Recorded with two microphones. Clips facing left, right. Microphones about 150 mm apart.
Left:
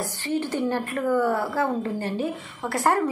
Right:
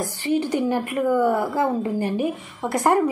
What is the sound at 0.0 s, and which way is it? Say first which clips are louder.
A woman's voice: right 4 dB; 15° right (ahead or behind).